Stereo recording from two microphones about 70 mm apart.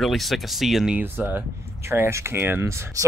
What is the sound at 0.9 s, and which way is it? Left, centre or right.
Speech, right.